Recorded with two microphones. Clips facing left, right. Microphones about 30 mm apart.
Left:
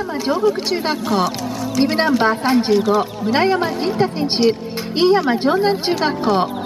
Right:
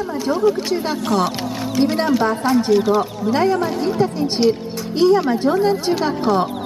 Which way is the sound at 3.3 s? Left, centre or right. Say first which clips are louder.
Left 1 dB; left.